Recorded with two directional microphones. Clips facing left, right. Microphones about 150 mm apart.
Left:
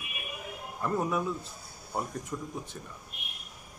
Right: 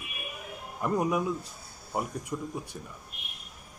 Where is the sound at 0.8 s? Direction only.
15° right (ahead or behind).